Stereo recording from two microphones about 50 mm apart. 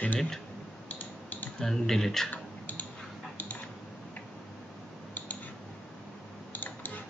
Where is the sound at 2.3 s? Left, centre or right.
Left.